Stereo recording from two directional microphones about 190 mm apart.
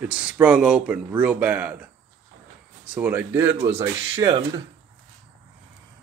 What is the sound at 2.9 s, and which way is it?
Speech, 10° right (ahead or behind).